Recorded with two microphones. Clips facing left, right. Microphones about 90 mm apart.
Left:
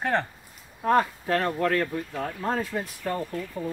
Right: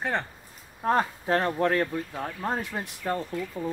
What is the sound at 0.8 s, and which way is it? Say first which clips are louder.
Speech: left 2 dB; 25° right (ahead or behind).